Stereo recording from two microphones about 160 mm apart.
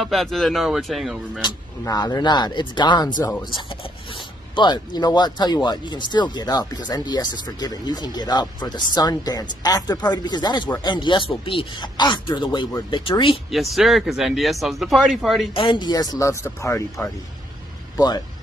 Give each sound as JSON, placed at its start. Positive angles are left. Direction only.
{"t": 0.0, "sound": "speech", "side_deg": 0}
{"t": 1.4, "sound": "speech", "side_deg": 25}
{"t": 13.5, "sound": "speech", "side_deg": 0}
{"t": 15.5, "sound": "speech", "side_deg": 30}
{"t": 17.9, "sound": "speech", "side_deg": 25}